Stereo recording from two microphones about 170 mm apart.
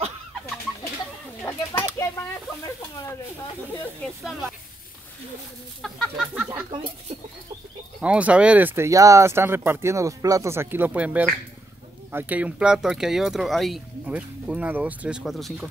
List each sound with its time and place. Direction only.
1.7 s a sound: 15° left (ahead or behind)
4.0 s speech: centre (ahead or behind)
5.8 s speech: centre (ahead or behind)
8.0 s speech: 5° right (ahead or behind)